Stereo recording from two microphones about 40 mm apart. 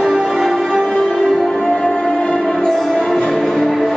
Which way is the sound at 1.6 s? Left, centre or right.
Left.